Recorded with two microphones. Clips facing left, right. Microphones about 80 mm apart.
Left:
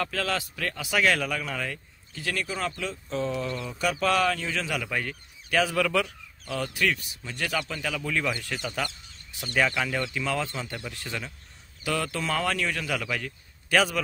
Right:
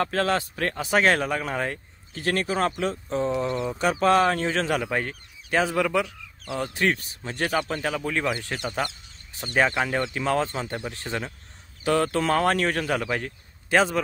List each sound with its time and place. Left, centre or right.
0.0 s speech: right
6.8 s speech: right